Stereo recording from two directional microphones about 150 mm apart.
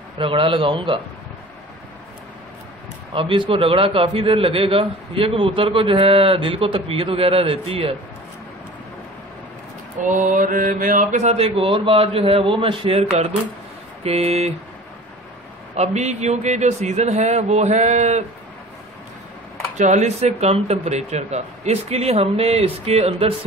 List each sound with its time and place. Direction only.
0.2 s a man's voice: 35° right (ahead or behind)
3.1 s a man's voice: 35° right (ahead or behind)
9.9 s speech: 60° right (ahead or behind); by 13.0 s 35° right (ahead or behind)
14.0 s speech: 45° right (ahead or behind)
15.7 s speech: 50° right (ahead or behind)
19.8 s speech: 55° right (ahead or behind)